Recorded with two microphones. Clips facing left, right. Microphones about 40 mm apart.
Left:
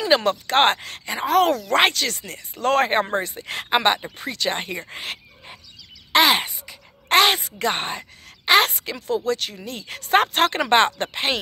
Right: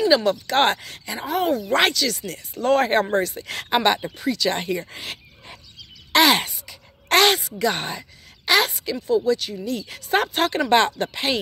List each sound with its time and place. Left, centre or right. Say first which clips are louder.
0.1 s speech: even; left
1.2 s speech: left 4 dB; left
1.8 s speech: left 1 dB; left
2.6 s speech: even; left
2.9 s speech: right 2 dB; left
4.2 s speech: right 3 dB; left
6.1 s speech: even; centre
6.5 s a sound: left 1 dB; left
7.3 s a woman's voice: right 1 dB; left
8.9 s speech: right 7 dB; left
9.7 s speech: left 2 dB; left